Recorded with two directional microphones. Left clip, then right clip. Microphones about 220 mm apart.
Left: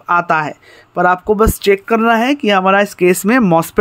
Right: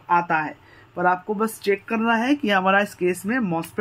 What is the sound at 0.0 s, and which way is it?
Speech, 50° left (ahead or behind).